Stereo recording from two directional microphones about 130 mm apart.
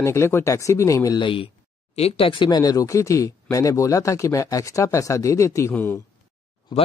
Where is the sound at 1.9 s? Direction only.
50° left (ahead or behind); by 6.0 s 15° left (ahead or behind).